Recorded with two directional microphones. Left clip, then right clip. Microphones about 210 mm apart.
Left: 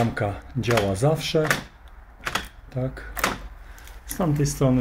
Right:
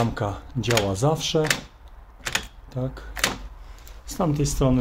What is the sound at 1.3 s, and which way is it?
Speech, 10° left (ahead or behind).